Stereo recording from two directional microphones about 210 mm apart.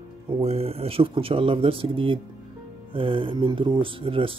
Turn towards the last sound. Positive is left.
turn(degrees=-25)  # may be behind; listen again after turning